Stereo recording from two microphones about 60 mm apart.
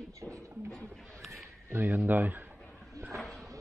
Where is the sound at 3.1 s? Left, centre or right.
Centre.